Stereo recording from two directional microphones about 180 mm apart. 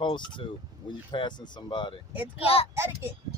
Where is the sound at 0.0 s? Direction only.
25° left (ahead or behind).